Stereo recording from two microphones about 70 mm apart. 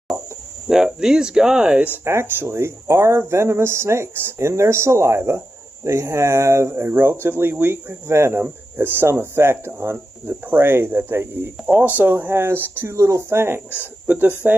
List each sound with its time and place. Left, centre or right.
0.7 s speech: centre
2.0 s speech: right
14.0 s speech: right